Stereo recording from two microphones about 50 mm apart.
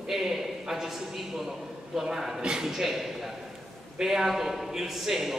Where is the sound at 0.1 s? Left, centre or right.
Centre.